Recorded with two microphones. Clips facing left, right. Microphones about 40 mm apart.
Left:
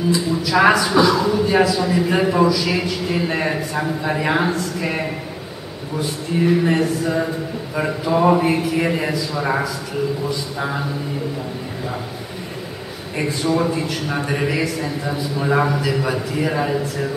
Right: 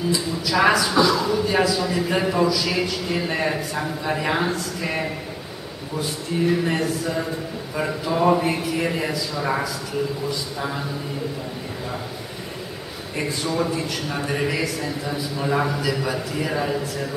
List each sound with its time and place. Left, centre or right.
0.1 s a man's voice: centre
13.2 s a man's voice: centre